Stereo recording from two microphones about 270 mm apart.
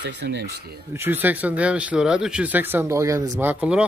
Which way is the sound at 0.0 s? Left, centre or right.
Right.